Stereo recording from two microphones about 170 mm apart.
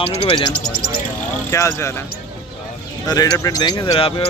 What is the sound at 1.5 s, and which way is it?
Speech, 15° left (ahead or behind).